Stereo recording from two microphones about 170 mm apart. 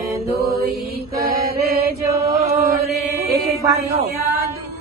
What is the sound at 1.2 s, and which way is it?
Chant, 65° right (ahead or behind).